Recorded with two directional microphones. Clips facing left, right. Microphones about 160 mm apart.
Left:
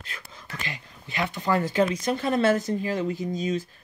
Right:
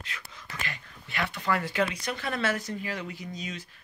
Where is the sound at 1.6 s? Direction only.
40° left (ahead or behind).